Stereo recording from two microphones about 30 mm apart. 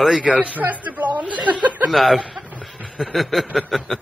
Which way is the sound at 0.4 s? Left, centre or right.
Right.